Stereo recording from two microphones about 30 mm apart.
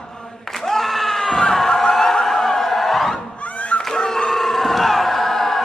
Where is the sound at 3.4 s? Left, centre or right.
Left.